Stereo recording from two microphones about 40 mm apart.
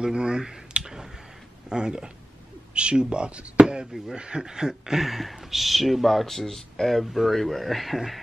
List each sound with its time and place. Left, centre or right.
0.0 s speech: right
0.7 s clicking: centre
1.7 s speech: centre
3.6 s speech: centre
5.0 s speech: centre
7.1 s speech: centre